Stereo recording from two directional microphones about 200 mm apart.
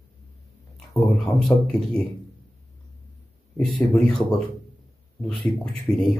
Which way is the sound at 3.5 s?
5° left (ahead or behind).